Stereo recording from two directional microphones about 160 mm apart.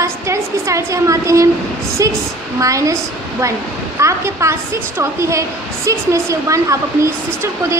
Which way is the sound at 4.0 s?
20° right (ahead or behind).